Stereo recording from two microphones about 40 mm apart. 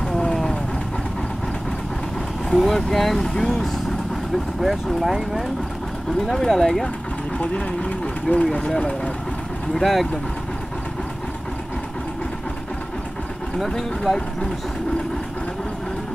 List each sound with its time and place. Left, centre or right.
0.2 s vehicle: centre
2.5 s speech: centre
5.0 s speech: centre
6.2 s speech: centre
7.3 s speech: left
8.4 s speech: centre
8.7 s speech: left
9.8 s speech: centre
13.6 s speech: centre